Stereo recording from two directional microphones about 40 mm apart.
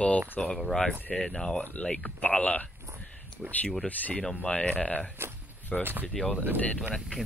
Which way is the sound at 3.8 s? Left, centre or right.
Left.